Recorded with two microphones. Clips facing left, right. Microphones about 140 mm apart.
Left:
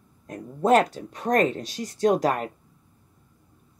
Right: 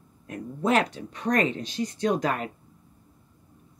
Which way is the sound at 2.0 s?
45° left (ahead or behind).